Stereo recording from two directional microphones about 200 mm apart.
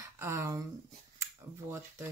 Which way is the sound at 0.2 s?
15° right (ahead or behind).